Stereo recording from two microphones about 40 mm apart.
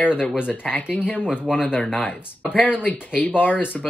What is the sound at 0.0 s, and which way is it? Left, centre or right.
Speech, left.